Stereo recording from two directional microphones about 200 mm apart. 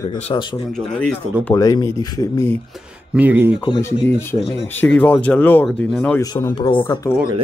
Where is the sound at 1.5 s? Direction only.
15° left (ahead or behind).